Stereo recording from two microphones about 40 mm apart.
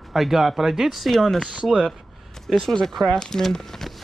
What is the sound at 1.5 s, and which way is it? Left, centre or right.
Speech, right.